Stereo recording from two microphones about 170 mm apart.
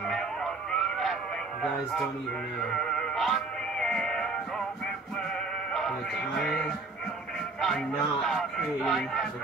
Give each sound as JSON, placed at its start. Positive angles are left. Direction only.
{"t": 0.1, "sound": "a sound", "side_deg": 5}
{"t": 2.7, "sound": "music", "side_deg": 0}
{"t": 5.7, "sound": "music", "side_deg": 0}
{"t": 7.6, "sound": "speech", "side_deg": 0}